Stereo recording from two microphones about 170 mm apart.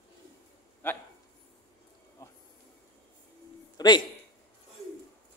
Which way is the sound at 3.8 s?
20° left (ahead or behind).